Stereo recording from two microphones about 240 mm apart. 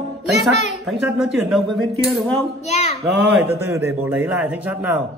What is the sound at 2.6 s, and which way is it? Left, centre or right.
Speech, left.